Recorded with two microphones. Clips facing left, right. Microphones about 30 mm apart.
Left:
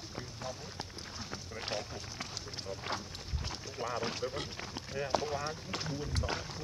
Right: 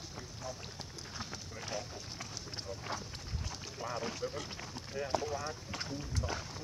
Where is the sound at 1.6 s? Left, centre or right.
Left.